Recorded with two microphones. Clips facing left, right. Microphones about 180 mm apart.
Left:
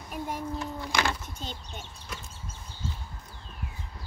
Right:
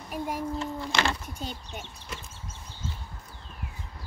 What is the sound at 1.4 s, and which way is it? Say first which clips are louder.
Speech: right 3 dB; 15° right (ahead or behind).